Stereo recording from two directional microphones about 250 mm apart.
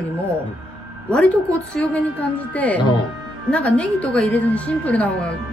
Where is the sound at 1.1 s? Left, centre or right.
Centre.